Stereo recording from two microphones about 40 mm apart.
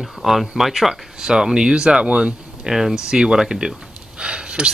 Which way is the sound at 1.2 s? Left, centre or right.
Centre.